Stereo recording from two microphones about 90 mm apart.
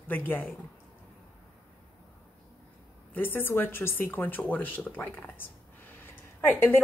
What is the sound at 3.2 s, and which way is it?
A woman's voice, 20° left (ahead or behind).